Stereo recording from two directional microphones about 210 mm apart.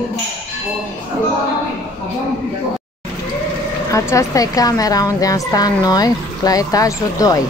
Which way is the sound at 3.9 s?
15° left (ahead or behind).